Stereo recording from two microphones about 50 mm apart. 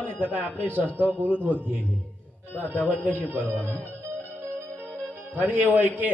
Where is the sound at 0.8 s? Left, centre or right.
Left.